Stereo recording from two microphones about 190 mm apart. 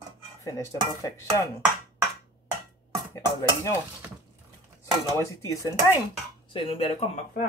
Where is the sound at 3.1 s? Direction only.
15° left (ahead or behind).